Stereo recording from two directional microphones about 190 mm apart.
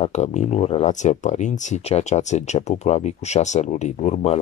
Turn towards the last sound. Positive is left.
turn(degrees=35)  # may be behind; listen again after turning